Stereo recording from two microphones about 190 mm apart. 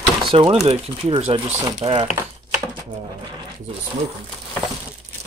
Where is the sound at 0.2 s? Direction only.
30° right (ahead or behind).